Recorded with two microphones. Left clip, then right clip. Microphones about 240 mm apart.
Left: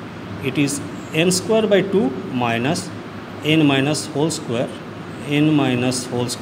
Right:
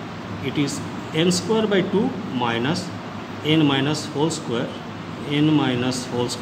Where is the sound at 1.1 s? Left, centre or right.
Left.